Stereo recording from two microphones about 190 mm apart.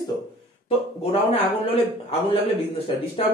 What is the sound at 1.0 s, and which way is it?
A man's voice, 30° left (ahead or behind).